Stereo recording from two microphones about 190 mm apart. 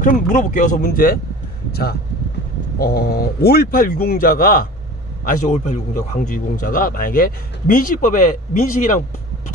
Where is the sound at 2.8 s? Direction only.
55° left (ahead or behind).